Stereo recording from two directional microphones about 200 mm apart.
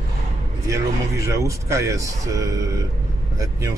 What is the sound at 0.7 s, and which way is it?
Speech, 15° right (ahead or behind).